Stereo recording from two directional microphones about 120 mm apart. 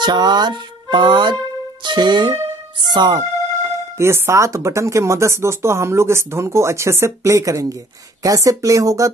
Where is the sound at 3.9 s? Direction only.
20° right (ahead or behind).